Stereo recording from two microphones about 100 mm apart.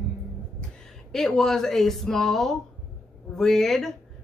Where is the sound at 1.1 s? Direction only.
5° left (ahead or behind).